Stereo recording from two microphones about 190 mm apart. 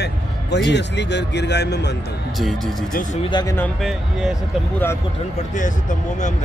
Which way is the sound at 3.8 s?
Centre (ahead or behind).